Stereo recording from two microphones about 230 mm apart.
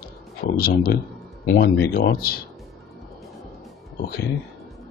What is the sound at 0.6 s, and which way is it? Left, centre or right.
Speech, left.